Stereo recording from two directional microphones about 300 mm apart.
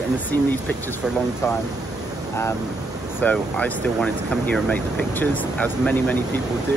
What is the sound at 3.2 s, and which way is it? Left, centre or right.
Speech, centre.